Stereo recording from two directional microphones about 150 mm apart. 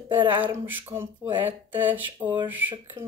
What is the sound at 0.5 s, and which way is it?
Speech, 15° right (ahead or behind).